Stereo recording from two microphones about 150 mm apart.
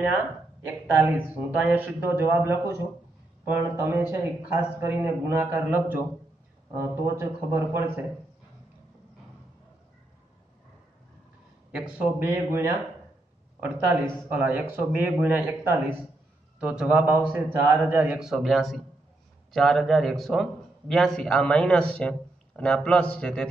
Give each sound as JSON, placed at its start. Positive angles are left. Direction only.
{"t": 0.9, "sound": "a man's voice", "side_deg": -10}
{"t": 11.7, "sound": "a man's voice", "side_deg": -10}
{"t": 14.3, "sound": "a man's voice", "side_deg": -10}